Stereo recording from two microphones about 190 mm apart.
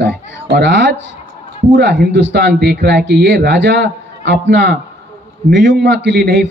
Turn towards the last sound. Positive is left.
turn(degrees=-65)  # may be behind; listen again after turning